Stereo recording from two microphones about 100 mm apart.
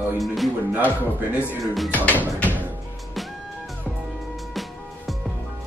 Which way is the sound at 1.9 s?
15° left (ahead or behind).